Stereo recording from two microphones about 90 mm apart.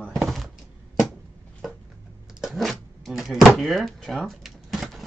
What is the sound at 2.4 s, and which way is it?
Door, centre (ahead or behind).